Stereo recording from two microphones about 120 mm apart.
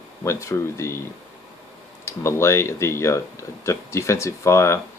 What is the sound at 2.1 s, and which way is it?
Speech, 25° left (ahead or behind).